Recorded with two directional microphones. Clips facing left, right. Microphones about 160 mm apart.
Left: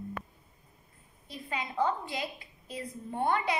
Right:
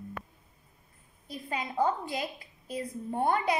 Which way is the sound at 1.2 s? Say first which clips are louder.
Right 2 dB; 40° right (ahead or behind).